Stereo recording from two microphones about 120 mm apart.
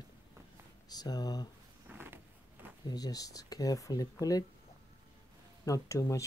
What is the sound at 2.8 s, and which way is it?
Speech, 30° left (ahead or behind).